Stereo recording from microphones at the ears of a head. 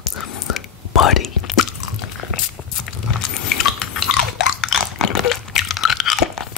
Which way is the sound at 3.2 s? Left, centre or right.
Left.